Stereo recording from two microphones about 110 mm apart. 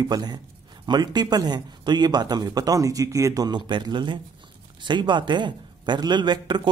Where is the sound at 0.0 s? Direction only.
40° right (ahead or behind).